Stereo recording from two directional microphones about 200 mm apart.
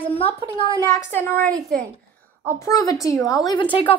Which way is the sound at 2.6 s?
15° left (ahead or behind).